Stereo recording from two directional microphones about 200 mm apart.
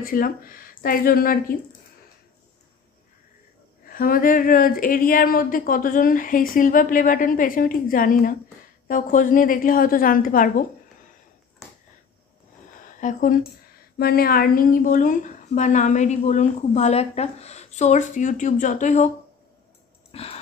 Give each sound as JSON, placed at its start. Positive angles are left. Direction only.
{"t": 0.0, "sound": "speech", "side_deg": 45}
{"t": 3.8, "sound": "speech", "side_deg": 45}
{"t": 12.8, "sound": "a woman's voice", "side_deg": 40}
{"t": 20.1, "sound": "a sound", "side_deg": 30}